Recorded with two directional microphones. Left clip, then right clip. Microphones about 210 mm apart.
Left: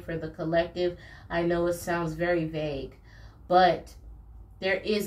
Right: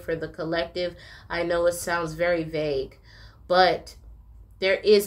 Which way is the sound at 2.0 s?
35° right (ahead or behind).